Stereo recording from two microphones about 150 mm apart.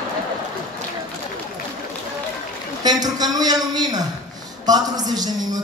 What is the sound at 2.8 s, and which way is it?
A man's voice, 25° right (ahead or behind).